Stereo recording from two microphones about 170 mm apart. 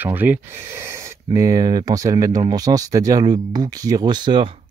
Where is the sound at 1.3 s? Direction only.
20° right (ahead or behind).